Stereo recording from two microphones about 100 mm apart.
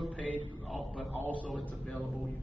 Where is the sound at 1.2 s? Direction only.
15° right (ahead or behind).